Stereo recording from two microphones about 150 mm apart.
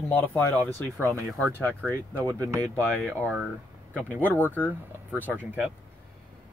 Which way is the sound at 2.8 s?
5° left (ahead or behind).